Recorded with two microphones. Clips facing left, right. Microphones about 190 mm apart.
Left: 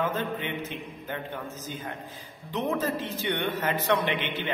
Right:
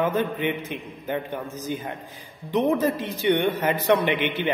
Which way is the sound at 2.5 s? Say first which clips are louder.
Right 7 dB; 15° right (ahead or behind).